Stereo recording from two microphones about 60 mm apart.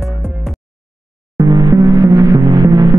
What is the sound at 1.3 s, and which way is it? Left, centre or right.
Throbbing, right.